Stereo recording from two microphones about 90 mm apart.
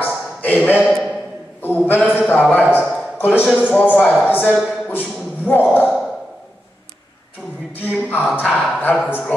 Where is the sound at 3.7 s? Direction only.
20° left (ahead or behind).